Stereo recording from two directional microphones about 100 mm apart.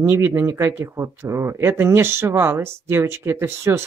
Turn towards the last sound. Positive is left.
turn(degrees=-25)  # may be behind; listen again after turning